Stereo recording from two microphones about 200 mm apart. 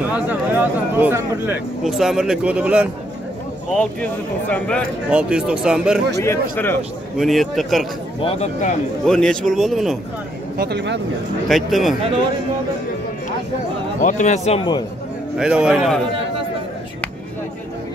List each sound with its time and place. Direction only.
0.0 s a man's voice: 10° right (ahead or behind)
4.0 s speech: 5° left (ahead or behind)
5.1 s a man's voice: 5° right (ahead or behind)
6.2 s speech: 10° left (ahead or behind)
7.2 s a man's voice: centre (ahead or behind)
8.2 s speech: 30° left (ahead or behind)
9.0 s a man's voice: 5° left (ahead or behind)
10.6 s speech: 55° right (ahead or behind)
11.4 s a man's voice: centre (ahead or behind)
14.0 s speech: 35° left (ahead or behind)
15.3 s a man's voice: 5° right (ahead or behind)